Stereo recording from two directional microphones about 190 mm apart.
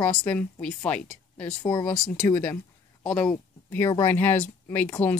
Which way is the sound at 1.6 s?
20° left (ahead or behind).